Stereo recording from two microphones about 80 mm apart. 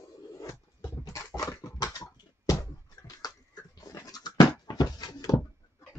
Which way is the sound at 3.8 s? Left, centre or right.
Left.